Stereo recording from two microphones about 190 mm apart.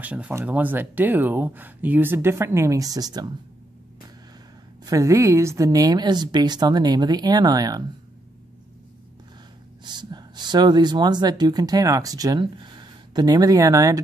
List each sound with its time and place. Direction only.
0.0 s speech: 10° right (ahead or behind)
4.8 s speech: 15° right (ahead or behind)
9.8 s speech: 25° right (ahead or behind)